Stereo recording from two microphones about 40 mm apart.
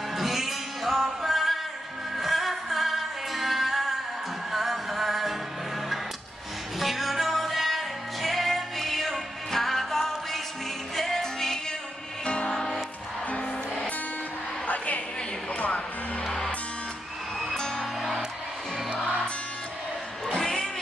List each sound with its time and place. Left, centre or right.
0.1 s music: centre
6.8 s music: centre
13.3 s music: left
15.5 s music: left
17.6 s music: centre
20.2 s a sound: centre